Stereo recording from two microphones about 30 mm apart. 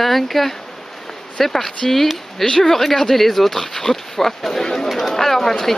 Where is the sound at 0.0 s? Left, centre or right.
Centre.